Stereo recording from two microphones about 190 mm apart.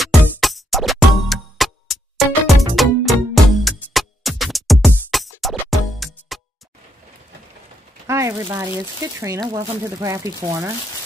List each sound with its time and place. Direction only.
0.0 s music: centre (ahead or behind)
8.1 s a sound: 15° right (ahead or behind)
8.5 s speech: 15° right (ahead or behind)